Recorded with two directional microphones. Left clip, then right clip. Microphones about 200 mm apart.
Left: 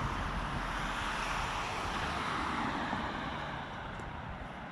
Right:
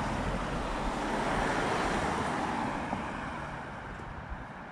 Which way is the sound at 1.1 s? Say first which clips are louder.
Right 5 dB; 45° right (ahead or behind).